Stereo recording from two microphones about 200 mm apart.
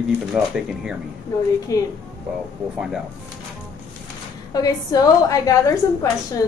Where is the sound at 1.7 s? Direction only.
15° left (ahead or behind).